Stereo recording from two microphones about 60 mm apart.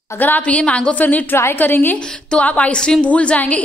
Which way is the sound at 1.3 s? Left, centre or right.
Left.